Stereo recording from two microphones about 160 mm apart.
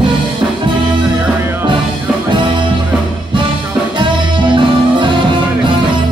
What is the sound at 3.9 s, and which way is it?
Music, 30° right (ahead or behind).